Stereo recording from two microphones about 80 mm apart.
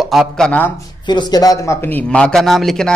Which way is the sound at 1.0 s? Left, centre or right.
Left.